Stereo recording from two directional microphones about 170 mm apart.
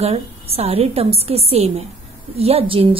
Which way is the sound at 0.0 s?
35° right (ahead or behind).